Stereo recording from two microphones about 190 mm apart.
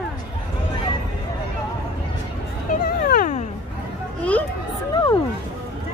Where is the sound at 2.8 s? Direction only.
50° left (ahead or behind).